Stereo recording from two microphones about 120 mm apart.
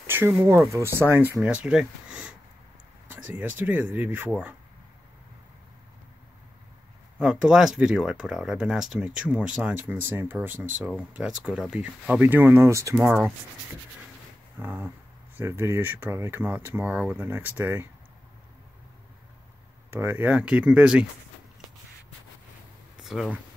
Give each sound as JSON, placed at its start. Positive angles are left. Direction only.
{"t": 0.0, "sound": "speech", "side_deg": -20}
{"t": 7.2, "sound": "speech", "side_deg": -5}
{"t": 12.9, "sound": "speech", "side_deg": -10}
{"t": 14.6, "sound": "speech", "side_deg": -15}
{"t": 19.9, "sound": "speech", "side_deg": -15}
{"t": 22.9, "sound": "a sound", "side_deg": -5}